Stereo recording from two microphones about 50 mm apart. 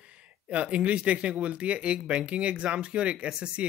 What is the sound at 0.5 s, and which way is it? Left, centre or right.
Speech, right.